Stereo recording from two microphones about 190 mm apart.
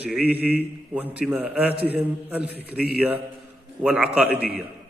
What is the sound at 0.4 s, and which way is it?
Speech, 5° right (ahead or behind).